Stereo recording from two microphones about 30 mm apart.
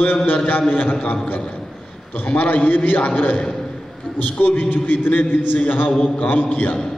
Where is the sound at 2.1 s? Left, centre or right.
Left.